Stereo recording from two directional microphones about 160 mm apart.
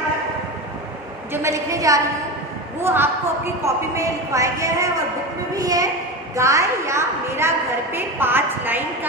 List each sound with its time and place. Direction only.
1.3 s a woman's voice: 20° right (ahead or behind)